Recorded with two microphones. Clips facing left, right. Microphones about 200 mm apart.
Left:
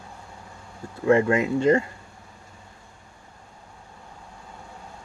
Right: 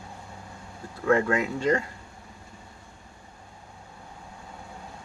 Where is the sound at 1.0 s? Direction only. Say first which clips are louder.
Left 4 dB; 25° left (ahead or behind).